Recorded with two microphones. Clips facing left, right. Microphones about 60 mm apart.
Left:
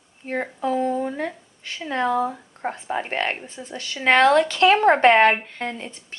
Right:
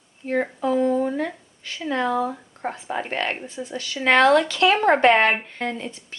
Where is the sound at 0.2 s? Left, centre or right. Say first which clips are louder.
Right 2 dB; left.